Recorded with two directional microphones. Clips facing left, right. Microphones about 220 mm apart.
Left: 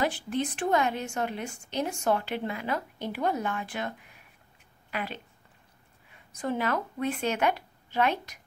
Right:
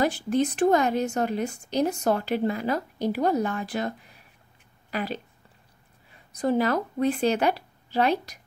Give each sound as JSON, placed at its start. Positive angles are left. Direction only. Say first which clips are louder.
{"t": 0.0, "sound": "a woman's voice", "louder": "right 5 dB", "side_deg": -40}
{"t": 6.3, "sound": "a woman's voice", "louder": "right 6 dB", "side_deg": -35}